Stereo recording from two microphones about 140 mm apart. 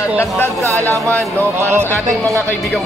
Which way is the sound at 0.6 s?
20° right (ahead or behind).